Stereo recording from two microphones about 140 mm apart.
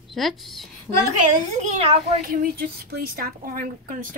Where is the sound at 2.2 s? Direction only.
90° right.